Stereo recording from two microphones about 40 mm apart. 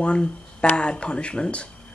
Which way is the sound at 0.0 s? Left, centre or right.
Left.